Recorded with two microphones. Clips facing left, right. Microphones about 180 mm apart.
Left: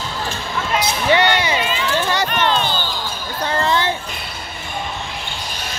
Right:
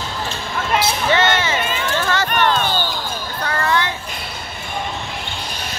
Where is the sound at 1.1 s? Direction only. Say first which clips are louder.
Left 3 dB; 15° left (ahead or behind).